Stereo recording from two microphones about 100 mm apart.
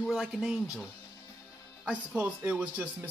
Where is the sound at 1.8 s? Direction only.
15° right (ahead or behind).